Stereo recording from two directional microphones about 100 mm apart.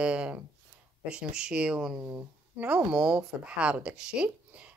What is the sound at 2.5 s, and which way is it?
Speech, 15° right (ahead or behind).